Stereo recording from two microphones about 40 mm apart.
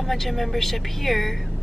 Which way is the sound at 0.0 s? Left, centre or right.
Centre.